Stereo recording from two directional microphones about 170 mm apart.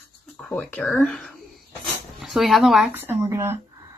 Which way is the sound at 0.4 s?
10° left (ahead or behind).